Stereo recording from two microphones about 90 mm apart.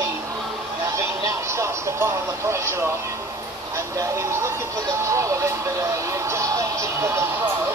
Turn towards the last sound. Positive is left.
turn(degrees=-30)  # may be behind; listen again after turning